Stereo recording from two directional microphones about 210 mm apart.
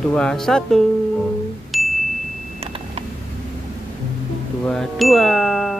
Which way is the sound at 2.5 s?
30° right (ahead or behind).